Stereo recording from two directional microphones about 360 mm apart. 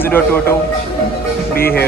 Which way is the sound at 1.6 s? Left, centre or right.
Left.